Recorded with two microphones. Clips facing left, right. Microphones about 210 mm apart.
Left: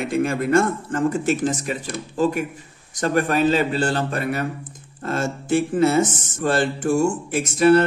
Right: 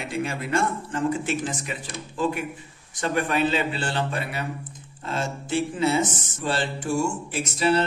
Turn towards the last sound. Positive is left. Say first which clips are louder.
# left 7 dB
turn(degrees=50)  # may be behind; listen again after turning